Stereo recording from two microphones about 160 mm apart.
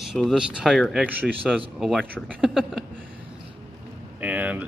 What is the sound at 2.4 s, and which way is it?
Speech, centre (ahead or behind).